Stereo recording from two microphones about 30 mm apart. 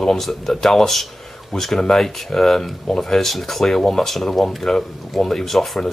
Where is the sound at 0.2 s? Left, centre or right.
Centre.